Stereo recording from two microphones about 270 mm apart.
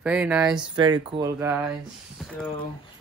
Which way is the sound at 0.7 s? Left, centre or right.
Centre.